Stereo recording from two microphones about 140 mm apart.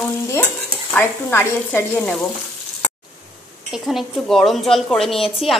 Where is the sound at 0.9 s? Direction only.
15° left (ahead or behind).